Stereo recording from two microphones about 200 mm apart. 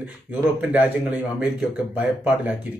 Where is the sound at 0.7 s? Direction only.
5° right (ahead or behind).